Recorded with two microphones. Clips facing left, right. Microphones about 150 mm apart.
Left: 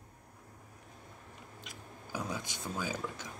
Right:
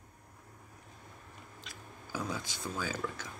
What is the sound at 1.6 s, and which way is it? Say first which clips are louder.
Speech: left 1 dB; 15° left (ahead or behind).